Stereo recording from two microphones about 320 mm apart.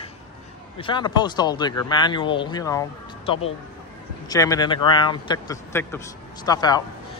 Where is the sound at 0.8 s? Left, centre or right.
Centre.